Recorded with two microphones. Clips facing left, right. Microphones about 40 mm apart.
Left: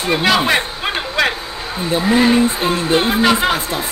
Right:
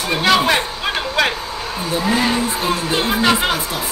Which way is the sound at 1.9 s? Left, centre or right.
Left.